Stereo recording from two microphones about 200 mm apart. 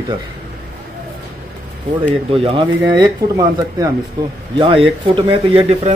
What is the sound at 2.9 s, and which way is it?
Speech, 20° right (ahead or behind).